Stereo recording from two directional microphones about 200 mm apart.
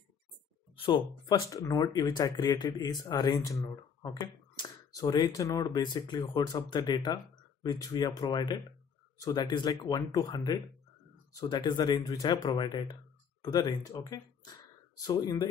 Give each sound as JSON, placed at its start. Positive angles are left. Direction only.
{"t": 0.7, "sound": "speech", "side_deg": 25}